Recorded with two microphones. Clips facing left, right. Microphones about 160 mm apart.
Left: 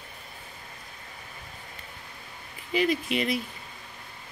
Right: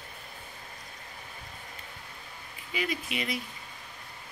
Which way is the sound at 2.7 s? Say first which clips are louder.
Left 8 dB; 40° left (ahead or behind).